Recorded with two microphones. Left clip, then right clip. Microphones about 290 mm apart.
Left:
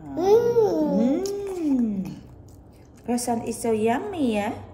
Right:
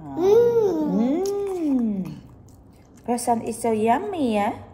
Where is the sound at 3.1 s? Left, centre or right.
Centre.